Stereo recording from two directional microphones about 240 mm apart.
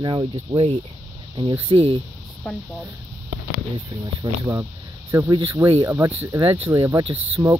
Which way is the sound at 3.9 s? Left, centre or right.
Centre.